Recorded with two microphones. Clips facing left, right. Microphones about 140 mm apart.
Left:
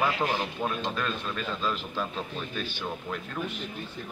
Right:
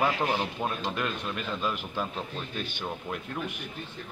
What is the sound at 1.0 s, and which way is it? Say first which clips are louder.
Speech: even; 10° right (ahead or behind).